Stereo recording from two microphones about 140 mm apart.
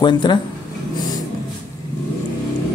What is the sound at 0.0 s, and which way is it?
Speech, 30° left (ahead or behind).